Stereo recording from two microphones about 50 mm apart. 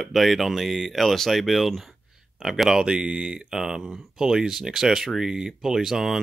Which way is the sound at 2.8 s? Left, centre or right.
Centre.